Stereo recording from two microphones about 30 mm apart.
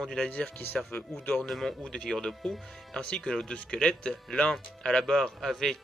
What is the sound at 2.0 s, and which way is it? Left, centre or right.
Speech, centre.